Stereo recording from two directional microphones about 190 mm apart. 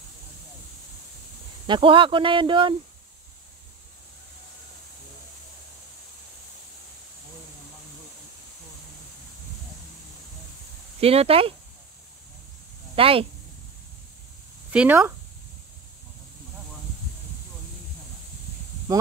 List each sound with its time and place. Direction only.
1.7 s speech: 25° right (ahead or behind)
11.0 s speech: 30° right (ahead or behind)
12.9 s speech: 30° right (ahead or behind)
14.7 s speech: 5° right (ahead or behind)